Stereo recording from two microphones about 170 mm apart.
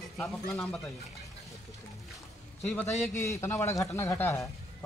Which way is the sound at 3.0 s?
15° left (ahead or behind).